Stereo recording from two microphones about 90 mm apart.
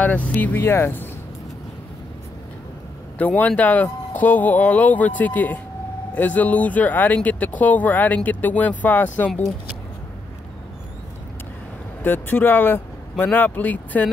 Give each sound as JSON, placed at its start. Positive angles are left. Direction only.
{"t": 0.0, "sound": "speech", "side_deg": 15}
{"t": 3.2, "sound": "speech", "side_deg": 15}
{"t": 12.0, "sound": "speech", "side_deg": 20}